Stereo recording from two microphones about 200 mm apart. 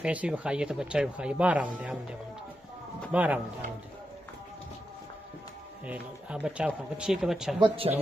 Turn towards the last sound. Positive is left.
turn(degrees=-25)  # may be behind; listen again after turning